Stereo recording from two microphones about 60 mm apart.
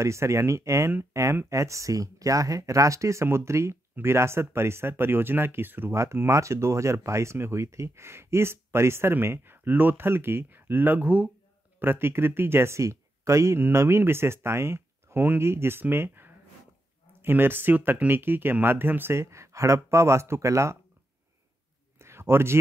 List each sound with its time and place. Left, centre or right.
0.0 s speech: right
5.9 s speech: right
11.8 s speech: right
13.6 s speech: right
19.1 s speech: right
21.9 s a sound: right